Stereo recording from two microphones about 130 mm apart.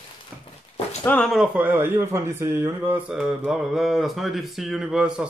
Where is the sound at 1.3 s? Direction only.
10° right (ahead or behind).